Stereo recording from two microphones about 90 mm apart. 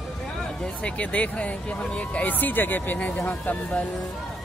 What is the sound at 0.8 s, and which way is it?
Speech, 15° left (ahead or behind).